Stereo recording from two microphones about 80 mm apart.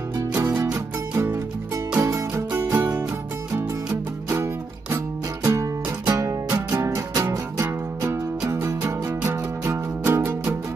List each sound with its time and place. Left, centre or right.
0.7 s music: right
4.9 s music: right
8.5 s music: right